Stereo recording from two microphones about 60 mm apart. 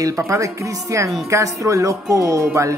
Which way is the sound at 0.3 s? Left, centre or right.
Right.